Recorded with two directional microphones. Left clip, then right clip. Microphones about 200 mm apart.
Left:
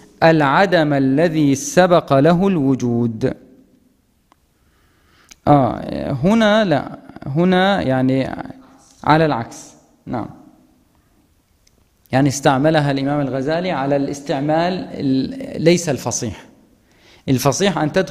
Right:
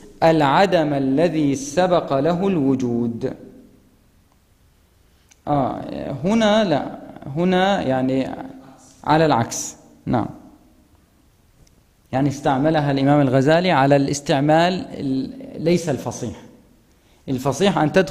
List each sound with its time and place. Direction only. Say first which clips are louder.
0.2 s speech: left 2 dB; 10° left (ahead or behind); by 3.3 s 30° left (ahead or behind)
5.3 s a man's voice: left 7 dB; 25° left (ahead or behind)
12.1 s speech: left 5 dB; 15° left (ahead or behind)
13.1 s speech: right 4 dB; 15° right (ahead or behind)
15.0 s speech: left 7 dB; 10° left (ahead or behind)
17.2 s a sound: left 7 dB; 20° left (ahead or behind)
17.5 s speech: even; 10° left (ahead or behind)